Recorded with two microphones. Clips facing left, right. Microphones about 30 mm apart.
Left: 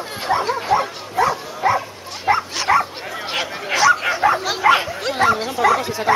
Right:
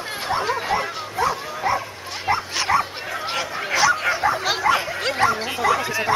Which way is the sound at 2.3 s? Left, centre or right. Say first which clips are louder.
Left 5 dB; left.